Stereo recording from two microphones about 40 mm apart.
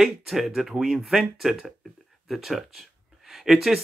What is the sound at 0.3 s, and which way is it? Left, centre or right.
Speech, centre.